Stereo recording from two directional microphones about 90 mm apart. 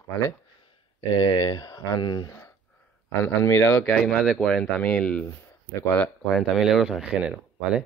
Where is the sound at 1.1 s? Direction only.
50° left (ahead or behind).